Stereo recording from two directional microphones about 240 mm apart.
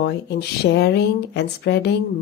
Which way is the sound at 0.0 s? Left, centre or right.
Left.